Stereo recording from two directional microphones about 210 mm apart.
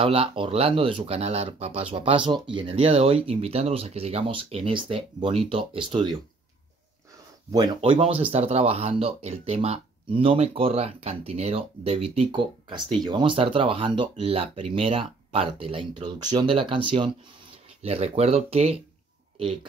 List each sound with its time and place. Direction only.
0.0 s speech: 25° right (ahead or behind)
7.5 s speech: 20° right (ahead or behind)